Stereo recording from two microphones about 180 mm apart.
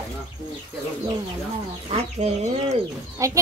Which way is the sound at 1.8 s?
35° right (ahead or behind).